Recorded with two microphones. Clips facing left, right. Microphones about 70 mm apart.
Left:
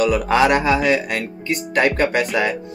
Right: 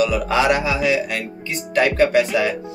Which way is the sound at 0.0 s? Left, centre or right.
Left.